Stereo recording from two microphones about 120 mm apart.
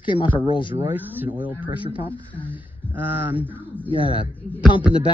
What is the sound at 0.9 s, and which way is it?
Speech, 15° right (ahead or behind).